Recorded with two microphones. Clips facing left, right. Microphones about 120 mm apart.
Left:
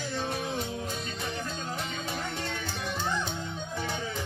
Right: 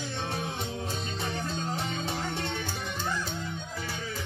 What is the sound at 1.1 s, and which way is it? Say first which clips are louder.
Music: right 2 dB; 30° right (ahead or behind).